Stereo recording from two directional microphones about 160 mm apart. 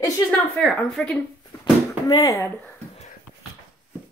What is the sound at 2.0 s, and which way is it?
Speech, 20° left (ahead or behind).